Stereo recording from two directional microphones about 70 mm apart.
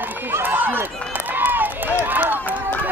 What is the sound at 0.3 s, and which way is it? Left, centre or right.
Run, right.